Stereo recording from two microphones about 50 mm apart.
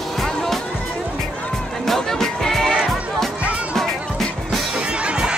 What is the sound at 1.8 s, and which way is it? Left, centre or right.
Music, centre.